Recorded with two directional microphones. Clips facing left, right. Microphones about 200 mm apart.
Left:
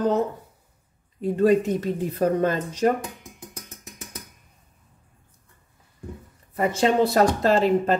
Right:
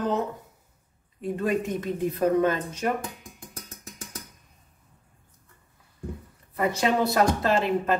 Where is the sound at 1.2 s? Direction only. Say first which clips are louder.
Left 7 dB; 35° left (ahead or behind).